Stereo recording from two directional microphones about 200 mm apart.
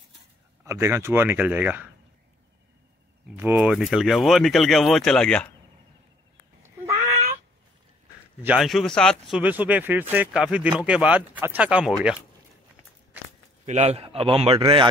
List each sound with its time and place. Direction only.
0.7 s a man's voice: 15° right (ahead or behind)
3.3 s speech: 10° right (ahead or behind)
8.5 s a man's voice: centre (ahead or behind)
13.7 s speech: 35° right (ahead or behind)